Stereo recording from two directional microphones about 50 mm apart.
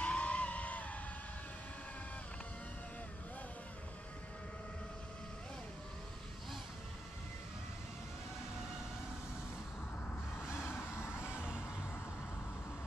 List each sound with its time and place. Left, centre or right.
0.0 s a sound: left
10.6 s vehicle: left
11.3 s music: right